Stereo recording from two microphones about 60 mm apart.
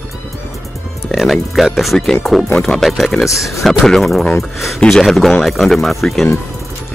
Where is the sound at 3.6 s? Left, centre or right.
Centre.